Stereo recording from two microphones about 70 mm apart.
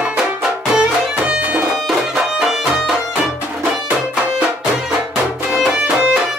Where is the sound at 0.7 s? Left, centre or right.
Centre.